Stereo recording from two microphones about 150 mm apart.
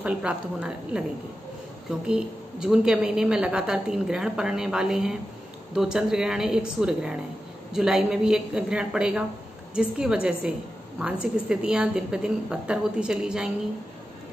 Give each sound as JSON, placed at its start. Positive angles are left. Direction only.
{"t": 0.0, "sound": "a woman's voice", "side_deg": -10}